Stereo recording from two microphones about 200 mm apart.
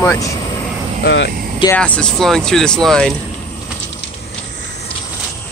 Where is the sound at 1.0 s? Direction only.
60° left (ahead or behind).